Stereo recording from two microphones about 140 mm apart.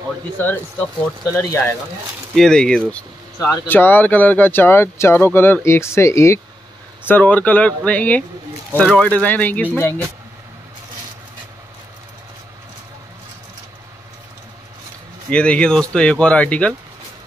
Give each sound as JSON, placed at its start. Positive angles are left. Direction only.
{"t": 0.4, "sound": "speech", "side_deg": 15}
{"t": 2.3, "sound": "speech", "side_deg": 5}
{"t": 3.3, "sound": "speech", "side_deg": 15}
{"t": 15.2, "sound": "speech", "side_deg": 10}